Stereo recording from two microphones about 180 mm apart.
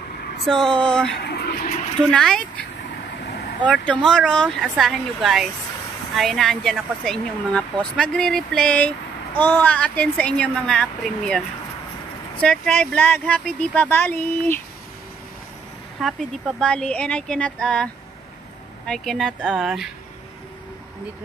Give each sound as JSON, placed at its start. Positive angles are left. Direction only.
{"t": 0.5, "sound": "speech", "side_deg": 5}
{"t": 1.2, "sound": "speech", "side_deg": 65}
{"t": 1.6, "sound": "speech", "side_deg": 45}
{"t": 2.0, "sound": "speech", "side_deg": 5}
{"t": 3.8, "sound": "speech", "side_deg": 5}
{"t": 16.0, "sound": "speech", "side_deg": 0}
{"t": 18.9, "sound": "speech", "side_deg": 5}